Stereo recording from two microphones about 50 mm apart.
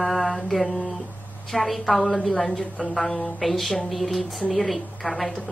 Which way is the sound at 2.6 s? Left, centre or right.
Left.